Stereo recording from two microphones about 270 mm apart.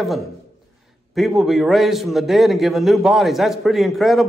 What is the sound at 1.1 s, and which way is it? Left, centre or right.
A man's voice, centre.